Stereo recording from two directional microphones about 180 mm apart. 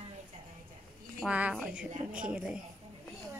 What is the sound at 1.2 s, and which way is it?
A woman's voice, 5° right (ahead or behind).